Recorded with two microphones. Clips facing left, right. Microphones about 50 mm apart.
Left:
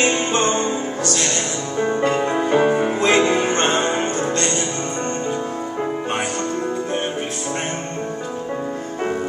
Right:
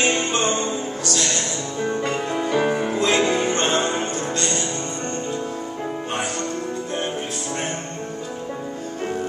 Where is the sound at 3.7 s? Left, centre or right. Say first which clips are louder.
Left 2 dB; left.